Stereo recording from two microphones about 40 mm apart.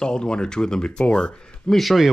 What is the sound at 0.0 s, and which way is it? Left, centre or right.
Speech, left.